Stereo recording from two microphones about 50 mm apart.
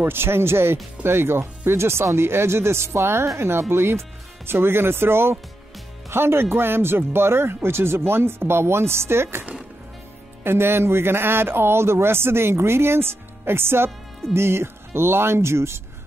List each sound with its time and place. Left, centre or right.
0.0 s a man's voice: right
10.4 s a man's voice: right